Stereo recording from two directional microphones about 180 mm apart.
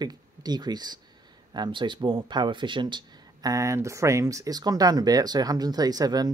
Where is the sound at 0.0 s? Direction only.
25° right (ahead or behind).